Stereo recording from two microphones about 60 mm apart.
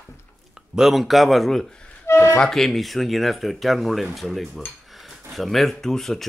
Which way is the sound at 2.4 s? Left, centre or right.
Centre.